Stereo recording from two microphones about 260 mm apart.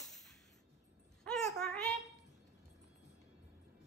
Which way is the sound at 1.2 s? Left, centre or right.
Centre.